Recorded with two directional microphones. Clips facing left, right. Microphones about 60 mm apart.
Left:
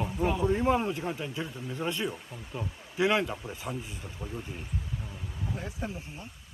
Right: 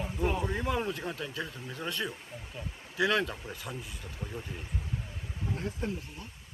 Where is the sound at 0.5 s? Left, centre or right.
Left.